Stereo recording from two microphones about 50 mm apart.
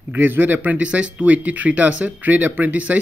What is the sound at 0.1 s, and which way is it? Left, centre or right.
Speech, right.